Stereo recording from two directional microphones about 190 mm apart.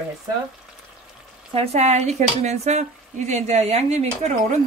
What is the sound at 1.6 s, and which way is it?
Speech, 35° right (ahead or behind).